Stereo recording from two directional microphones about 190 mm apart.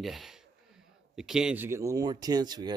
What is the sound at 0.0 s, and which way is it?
Speech, centre (ahead or behind).